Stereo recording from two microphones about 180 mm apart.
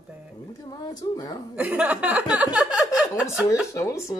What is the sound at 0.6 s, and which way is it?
Speech, 20° left (ahead or behind).